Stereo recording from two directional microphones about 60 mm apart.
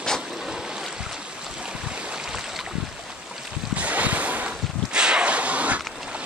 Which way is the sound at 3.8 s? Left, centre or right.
Right.